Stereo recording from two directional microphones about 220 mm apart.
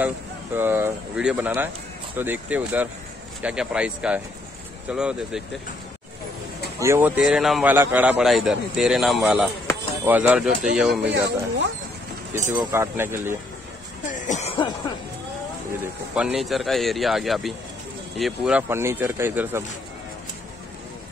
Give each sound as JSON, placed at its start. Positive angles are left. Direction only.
{"t": 0.6, "sound": "a man's voice", "side_deg": -10}
{"t": 6.8, "sound": "a man's voice", "side_deg": -10}
{"t": 11.0, "sound": "speech", "side_deg": -55}
{"t": 12.5, "sound": "speech", "side_deg": -10}
{"t": 14.1, "sound": "cough", "side_deg": 35}
{"t": 16.2, "sound": "a man's voice", "side_deg": 0}